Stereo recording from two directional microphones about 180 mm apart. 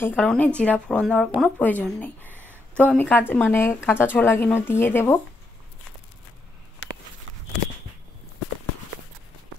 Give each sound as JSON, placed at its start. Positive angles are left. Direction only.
{"t": 0.0, "sound": "speech", "side_deg": 10}
{"t": 2.3, "sound": "a sound", "side_deg": -10}
{"t": 2.8, "sound": "speech", "side_deg": 10}